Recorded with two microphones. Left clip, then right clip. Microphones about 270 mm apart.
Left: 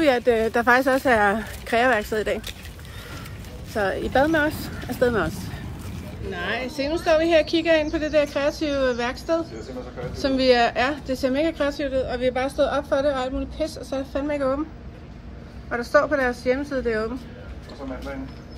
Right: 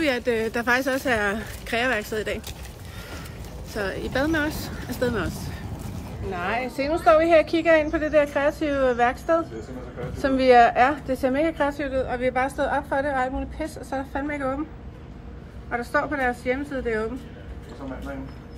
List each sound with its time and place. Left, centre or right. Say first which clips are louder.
0.0 s speech: left 4 dB; centre
3.7 s a woman's voice: left 5 dB; centre
6.3 s a woman's voice: right 1 dB; centre
10.3 s a woman's voice: right 3 dB; centre
12.5 s a woman's voice: left 3 dB; centre
13.0 s a woman's voice: left 1 dB; centre
13.8 s a woman's voice: left 2 dB; centre
15.7 s a woman's voice: left 5 dB; centre